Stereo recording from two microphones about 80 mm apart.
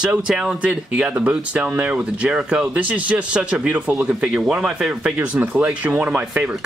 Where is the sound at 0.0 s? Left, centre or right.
Centre.